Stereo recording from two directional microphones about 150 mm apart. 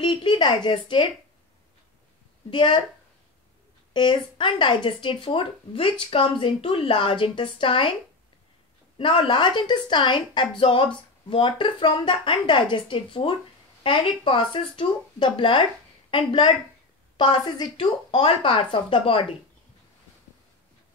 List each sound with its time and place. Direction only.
0.0 s speech: 35° left (ahead or behind)
2.5 s speech: 35° left (ahead or behind)
3.9 s speech: 30° left (ahead or behind)
8.9 s speech: 35° left (ahead or behind)